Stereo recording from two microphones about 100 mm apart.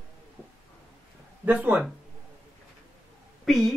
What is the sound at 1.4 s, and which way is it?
Speech, 15° right (ahead or behind).